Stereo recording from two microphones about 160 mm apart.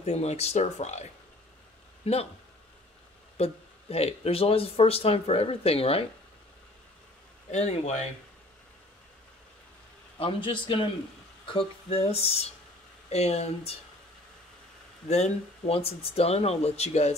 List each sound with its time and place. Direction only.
0.0 s speech: 45° left (ahead or behind)
2.0 s speech: 40° left (ahead or behind)
3.3 s speech: 40° left (ahead or behind)
7.5 s speech: 45° left (ahead or behind)
10.1 s speech: 35° left (ahead or behind)
15.0 s speech: 45° left (ahead or behind)